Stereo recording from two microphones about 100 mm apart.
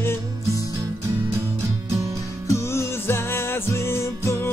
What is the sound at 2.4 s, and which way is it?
Music, 30° left (ahead or behind).